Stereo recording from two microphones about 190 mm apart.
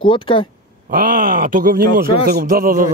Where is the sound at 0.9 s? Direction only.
45° right (ahead or behind).